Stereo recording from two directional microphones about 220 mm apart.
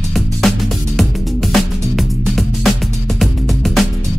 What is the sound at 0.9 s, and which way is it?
Music, centre (ahead or behind).